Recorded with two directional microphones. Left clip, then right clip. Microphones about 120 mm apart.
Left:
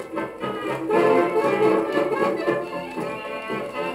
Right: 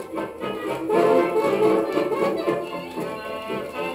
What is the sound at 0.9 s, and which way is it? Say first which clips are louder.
Music: even; 30° right (ahead or behind).